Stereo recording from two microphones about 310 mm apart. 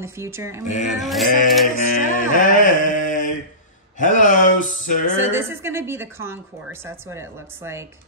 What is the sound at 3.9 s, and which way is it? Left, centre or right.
Speech, left.